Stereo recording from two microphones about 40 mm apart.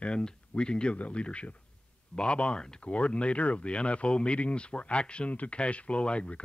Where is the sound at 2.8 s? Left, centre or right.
Left.